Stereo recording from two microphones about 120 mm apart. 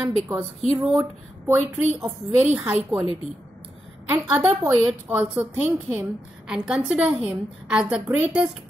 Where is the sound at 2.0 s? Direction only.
15° right (ahead or behind).